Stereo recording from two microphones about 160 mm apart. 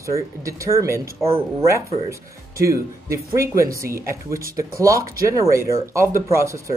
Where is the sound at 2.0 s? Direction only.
20° right (ahead or behind).